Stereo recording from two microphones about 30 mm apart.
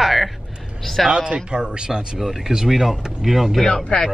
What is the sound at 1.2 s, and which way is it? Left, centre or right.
Speech, right.